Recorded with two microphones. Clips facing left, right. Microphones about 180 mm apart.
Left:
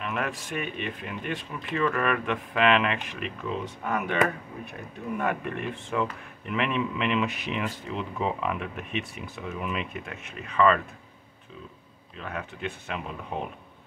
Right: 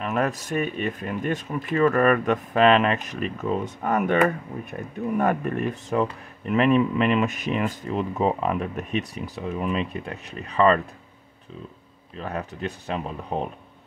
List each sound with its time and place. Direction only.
0.0 s speech: 40° right (ahead or behind)
12.2 s speech: 35° right (ahead or behind)